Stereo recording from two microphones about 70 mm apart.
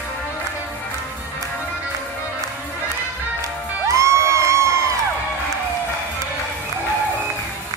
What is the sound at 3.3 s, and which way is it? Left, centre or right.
Music, right.